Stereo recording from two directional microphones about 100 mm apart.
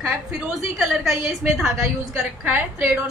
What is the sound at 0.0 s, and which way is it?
A woman's voice, 5° right (ahead or behind).